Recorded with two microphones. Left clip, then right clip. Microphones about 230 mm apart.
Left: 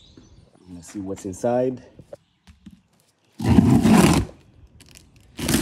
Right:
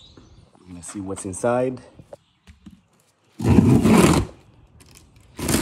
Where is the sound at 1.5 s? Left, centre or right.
Right.